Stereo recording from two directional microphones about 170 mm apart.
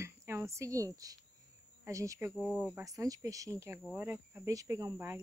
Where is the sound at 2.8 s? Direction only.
20° right (ahead or behind).